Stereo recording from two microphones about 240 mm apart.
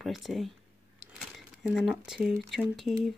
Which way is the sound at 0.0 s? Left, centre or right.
Centre.